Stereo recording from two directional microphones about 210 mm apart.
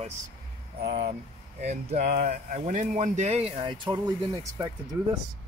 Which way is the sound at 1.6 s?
35° right (ahead or behind).